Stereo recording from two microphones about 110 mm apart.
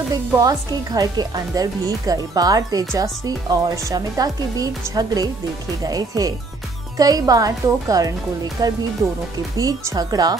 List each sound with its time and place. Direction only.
0.1 s speech: 35° right (ahead or behind)